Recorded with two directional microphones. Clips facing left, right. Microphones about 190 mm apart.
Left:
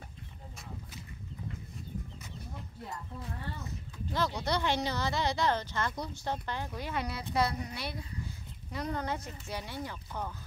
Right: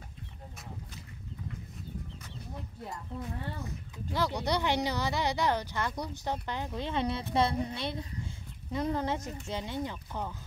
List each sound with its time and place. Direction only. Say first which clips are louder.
3.5 s speech: right 2 dB; 15° right (ahead or behind)